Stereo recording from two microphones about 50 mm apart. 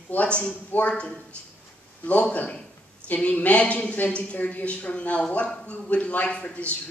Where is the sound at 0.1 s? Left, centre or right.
Left.